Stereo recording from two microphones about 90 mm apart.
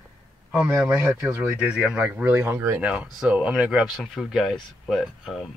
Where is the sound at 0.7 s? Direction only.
10° right (ahead or behind).